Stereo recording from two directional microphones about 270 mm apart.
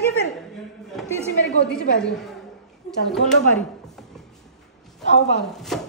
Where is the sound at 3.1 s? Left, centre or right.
Centre.